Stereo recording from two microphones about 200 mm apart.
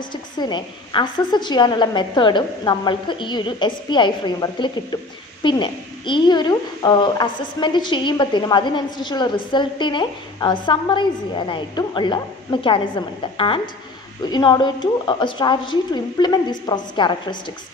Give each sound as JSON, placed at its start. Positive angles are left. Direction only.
{"t": 0.1, "sound": "a woman's voice", "side_deg": 20}